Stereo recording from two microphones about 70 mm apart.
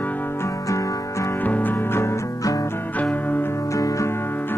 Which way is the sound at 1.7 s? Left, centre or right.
Left.